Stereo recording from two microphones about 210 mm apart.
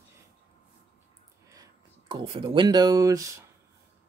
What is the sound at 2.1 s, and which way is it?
Speech, 25° right (ahead or behind).